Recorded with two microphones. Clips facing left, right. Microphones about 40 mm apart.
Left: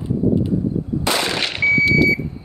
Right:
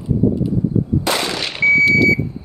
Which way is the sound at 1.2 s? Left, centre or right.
Left.